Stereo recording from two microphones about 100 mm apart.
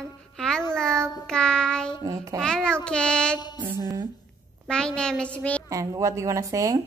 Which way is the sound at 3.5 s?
20° right (ahead or behind).